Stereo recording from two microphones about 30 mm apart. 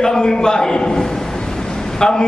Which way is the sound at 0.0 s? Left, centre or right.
Left.